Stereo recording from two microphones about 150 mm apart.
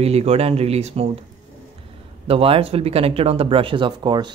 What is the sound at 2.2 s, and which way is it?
Speech, 40° right (ahead or behind).